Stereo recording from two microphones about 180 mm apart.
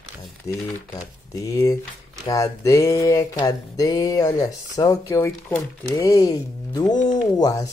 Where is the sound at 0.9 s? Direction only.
20° left (ahead or behind).